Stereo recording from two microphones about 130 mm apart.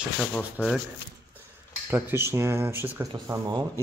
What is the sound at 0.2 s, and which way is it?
Speech, 5° left (ahead or behind).